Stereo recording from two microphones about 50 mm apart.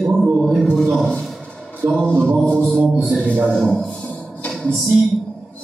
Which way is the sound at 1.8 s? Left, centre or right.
Right.